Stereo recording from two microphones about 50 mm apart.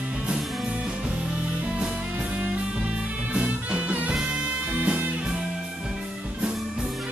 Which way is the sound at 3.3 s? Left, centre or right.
Centre.